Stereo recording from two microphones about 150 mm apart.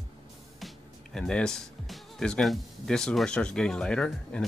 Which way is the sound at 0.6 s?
Centre (ahead or behind).